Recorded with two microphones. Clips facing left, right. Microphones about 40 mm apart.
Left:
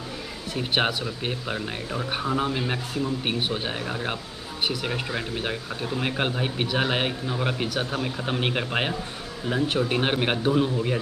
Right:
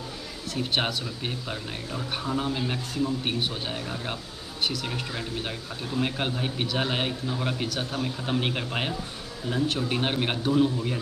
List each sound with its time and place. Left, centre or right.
0.6 s speech: centre